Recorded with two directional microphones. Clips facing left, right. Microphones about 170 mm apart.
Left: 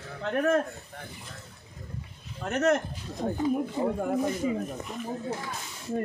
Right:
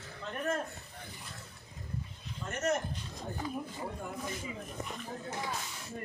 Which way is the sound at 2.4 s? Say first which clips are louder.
Left 8 dB; 70° left (ahead or behind).